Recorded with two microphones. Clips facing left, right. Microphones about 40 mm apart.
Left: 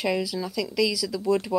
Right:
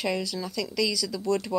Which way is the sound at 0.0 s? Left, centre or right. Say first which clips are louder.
Left 3 dB; centre.